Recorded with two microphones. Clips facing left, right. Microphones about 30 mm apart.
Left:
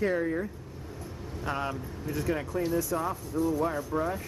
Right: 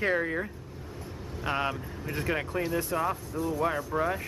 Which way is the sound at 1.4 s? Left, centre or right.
Right.